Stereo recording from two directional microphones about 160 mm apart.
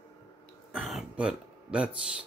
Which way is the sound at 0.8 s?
5° right (ahead or behind).